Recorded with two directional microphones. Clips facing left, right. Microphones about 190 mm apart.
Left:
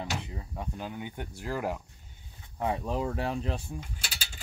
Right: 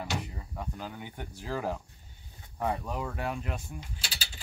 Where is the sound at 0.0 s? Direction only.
20° left (ahead or behind).